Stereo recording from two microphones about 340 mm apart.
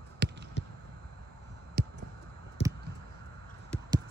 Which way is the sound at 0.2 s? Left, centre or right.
Right.